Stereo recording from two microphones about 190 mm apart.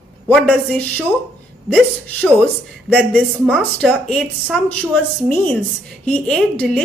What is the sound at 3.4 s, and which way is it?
Speech, 5° right (ahead or behind).